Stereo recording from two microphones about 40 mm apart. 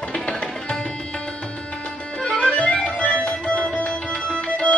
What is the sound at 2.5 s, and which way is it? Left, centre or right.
Music, left.